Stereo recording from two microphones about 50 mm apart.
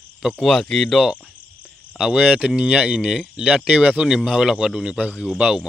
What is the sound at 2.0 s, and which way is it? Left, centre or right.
Speech, centre.